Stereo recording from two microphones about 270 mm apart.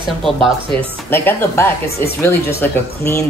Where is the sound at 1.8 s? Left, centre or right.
Left.